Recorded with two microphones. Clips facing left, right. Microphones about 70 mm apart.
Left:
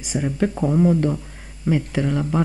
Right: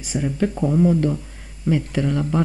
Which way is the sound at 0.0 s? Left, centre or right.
Centre.